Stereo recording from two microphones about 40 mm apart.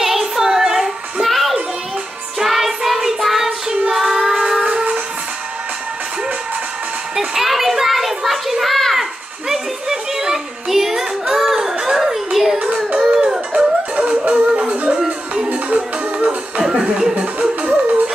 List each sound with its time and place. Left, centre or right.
0.0 s music: centre
1.2 s music: centre
7.2 s a sound: centre
9.5 s music: centre
13.9 s music: right
16.6 s music: centre
17.1 s music: right